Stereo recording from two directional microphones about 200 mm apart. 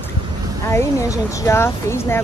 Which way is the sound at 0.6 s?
15° left (ahead or behind).